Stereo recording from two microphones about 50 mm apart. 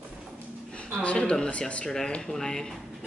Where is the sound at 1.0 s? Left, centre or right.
Left.